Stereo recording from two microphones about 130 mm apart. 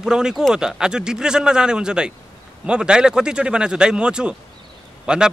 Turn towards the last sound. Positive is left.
turn(degrees=-5)  # may be behind; listen again after turning